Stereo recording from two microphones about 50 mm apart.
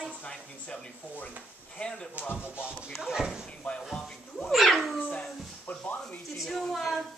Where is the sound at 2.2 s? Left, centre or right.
Right.